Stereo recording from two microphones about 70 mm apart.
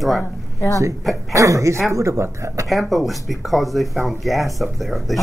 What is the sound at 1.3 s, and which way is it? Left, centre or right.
Speech, right.